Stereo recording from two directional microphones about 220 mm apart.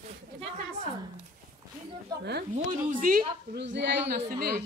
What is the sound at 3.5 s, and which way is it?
Speech, 50° right (ahead or behind).